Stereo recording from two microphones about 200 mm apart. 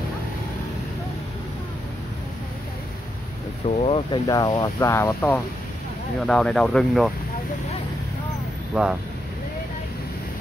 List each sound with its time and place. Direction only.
3.6 s speech: 30° left (ahead or behind); by 7.1 s centre (ahead or behind)
8.7 s speech: 5° right (ahead or behind)